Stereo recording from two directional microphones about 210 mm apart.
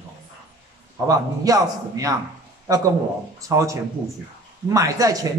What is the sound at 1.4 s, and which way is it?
Speech, 15° right (ahead or behind).